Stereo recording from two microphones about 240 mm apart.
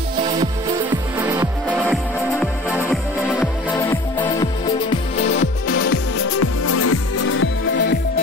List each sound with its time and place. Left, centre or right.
1.2 s music: centre
3.3 s music: centre
5.7 s music: left